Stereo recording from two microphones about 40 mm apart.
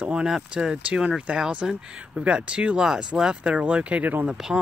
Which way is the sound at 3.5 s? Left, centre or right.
Right.